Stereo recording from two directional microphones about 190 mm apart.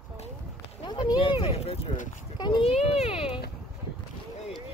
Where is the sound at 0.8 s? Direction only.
25° left (ahead or behind).